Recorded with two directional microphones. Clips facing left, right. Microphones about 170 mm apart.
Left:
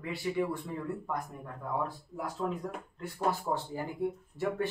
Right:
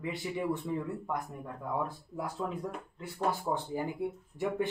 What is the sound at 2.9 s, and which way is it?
Speech, 10° right (ahead or behind).